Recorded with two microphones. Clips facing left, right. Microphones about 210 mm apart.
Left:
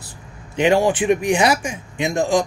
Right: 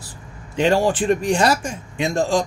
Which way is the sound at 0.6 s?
15° left (ahead or behind).